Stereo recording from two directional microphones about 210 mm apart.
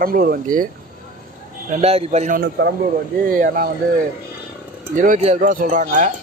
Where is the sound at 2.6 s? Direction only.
50° right (ahead or behind).